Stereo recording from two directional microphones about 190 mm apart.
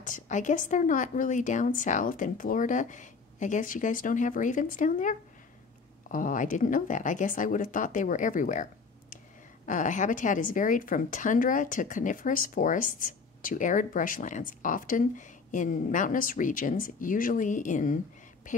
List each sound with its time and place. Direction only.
0.0 s speech: 40° left (ahead or behind)
6.1 s speech: 45° left (ahead or behind)
9.7 s speech: 40° left (ahead or behind)